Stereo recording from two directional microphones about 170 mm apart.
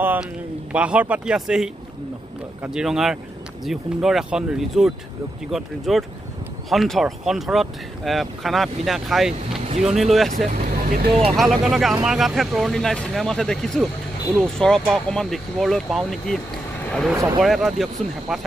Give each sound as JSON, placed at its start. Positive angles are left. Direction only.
{"t": 0.0, "sound": "a sound", "side_deg": -10}
{"t": 0.7, "sound": "speech", "side_deg": -10}
{"t": 10.3, "sound": "speech", "side_deg": -50}
{"t": 11.3, "sound": "speech", "side_deg": 0}
{"t": 16.8, "sound": "vehicle", "side_deg": 5}
{"t": 17.4, "sound": "speech", "side_deg": 0}